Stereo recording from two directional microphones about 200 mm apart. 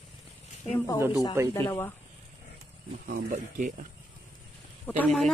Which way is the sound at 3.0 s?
40° right (ahead or behind).